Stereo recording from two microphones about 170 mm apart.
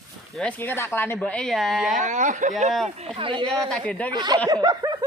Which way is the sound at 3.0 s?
30° right (ahead or behind).